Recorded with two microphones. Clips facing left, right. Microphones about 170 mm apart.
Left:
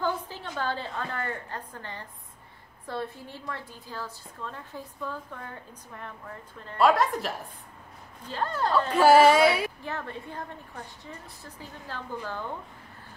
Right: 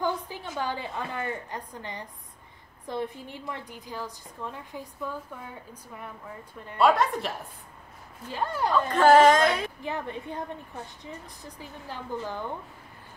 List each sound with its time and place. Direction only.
0.0 s a woman's voice: 15° right (ahead or behind)
6.8 s a woman's voice: centre (ahead or behind)
8.3 s a woman's voice: 10° right (ahead or behind)
8.9 s speech: 10° left (ahead or behind)
9.8 s a woman's voice: 15° right (ahead or behind)